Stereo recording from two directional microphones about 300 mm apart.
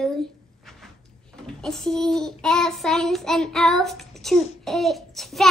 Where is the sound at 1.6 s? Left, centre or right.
Centre.